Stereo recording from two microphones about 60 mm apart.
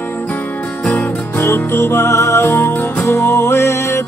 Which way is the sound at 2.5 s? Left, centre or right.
Left.